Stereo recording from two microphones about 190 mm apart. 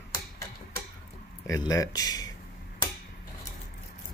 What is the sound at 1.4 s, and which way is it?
Speech, 15° left (ahead or behind).